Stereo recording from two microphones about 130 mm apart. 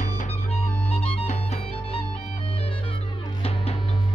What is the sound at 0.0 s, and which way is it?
Music, 65° left (ahead or behind).